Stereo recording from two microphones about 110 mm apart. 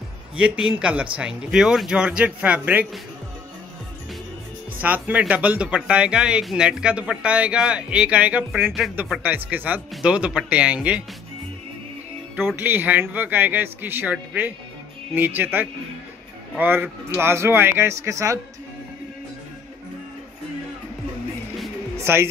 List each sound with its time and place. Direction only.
0.4 s speech: 5° right (ahead or behind)
4.8 s speech: 15° right (ahead or behind)
12.4 s speech: 15° right (ahead or behind)
21.9 s music: 25° right (ahead or behind)